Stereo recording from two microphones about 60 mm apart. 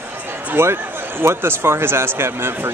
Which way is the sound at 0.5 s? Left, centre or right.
Right.